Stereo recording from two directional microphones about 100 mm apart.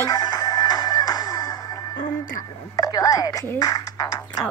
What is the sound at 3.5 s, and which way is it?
Music, 40° left (ahead or behind).